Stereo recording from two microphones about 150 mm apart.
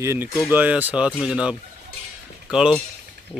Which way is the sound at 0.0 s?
15° right (ahead or behind).